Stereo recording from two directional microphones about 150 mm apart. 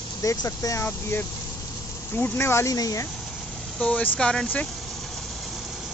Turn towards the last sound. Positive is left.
turn(degrees=5)  # may be behind; listen again after turning